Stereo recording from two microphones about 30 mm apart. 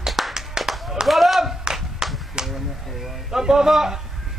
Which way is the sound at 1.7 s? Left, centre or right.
Right.